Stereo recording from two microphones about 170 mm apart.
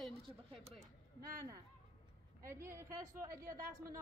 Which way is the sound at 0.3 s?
35° right (ahead or behind).